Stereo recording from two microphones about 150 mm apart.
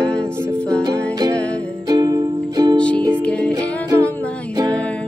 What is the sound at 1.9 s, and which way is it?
Music, 25° right (ahead or behind).